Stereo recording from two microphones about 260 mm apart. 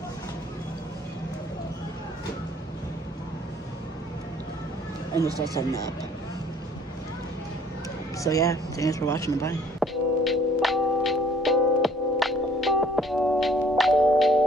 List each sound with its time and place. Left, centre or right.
5.1 s speech: centre
8.2 s speech: centre
9.8 s music: centre